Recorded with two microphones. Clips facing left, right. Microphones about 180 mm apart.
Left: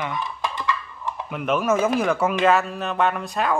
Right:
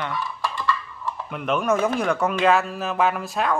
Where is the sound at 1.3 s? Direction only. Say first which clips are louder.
Left 1 dB; centre (ahead or behind).